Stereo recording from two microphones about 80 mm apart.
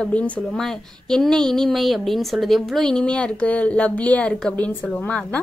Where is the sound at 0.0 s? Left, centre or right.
Centre.